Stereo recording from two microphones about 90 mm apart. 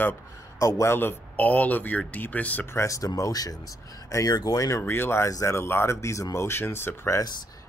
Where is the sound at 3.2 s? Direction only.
45° left (ahead or behind).